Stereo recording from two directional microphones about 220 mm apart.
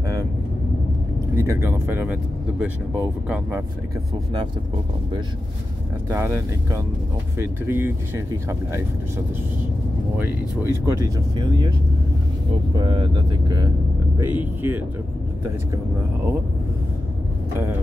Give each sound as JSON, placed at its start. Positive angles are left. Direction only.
{"t": 1.3, "sound": "speech", "side_deg": -10}
{"t": 6.0, "sound": "speech", "side_deg": -10}
{"t": 10.1, "sound": "speech", "side_deg": -10}
{"t": 12.7, "sound": "speech", "side_deg": -20}